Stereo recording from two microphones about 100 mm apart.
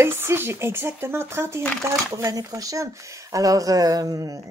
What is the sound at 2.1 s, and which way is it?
Speech, 35° right (ahead or behind).